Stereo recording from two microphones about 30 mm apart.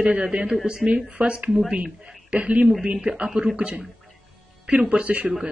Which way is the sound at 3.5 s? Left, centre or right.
Right.